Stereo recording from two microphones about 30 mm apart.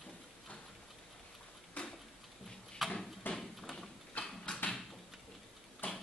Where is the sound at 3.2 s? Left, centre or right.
Left.